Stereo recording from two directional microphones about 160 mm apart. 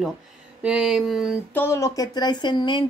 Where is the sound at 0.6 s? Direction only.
5° right (ahead or behind).